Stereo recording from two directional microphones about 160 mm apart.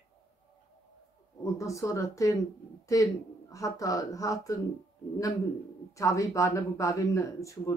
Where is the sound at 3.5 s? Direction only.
20° left (ahead or behind).